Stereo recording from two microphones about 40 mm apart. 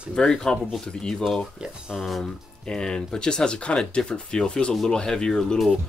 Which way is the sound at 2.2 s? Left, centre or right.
Centre.